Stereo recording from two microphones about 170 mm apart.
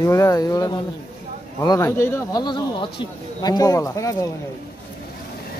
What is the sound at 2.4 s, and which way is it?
Speech, 25° left (ahead or behind).